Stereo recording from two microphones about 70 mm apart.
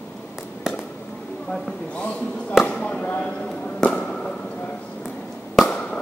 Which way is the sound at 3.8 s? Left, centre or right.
Centre.